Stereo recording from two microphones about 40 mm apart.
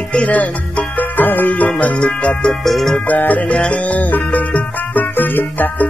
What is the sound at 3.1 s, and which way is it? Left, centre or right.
Music, left.